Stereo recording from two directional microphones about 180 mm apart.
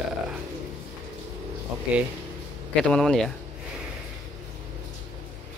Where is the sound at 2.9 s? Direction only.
5° left (ahead or behind).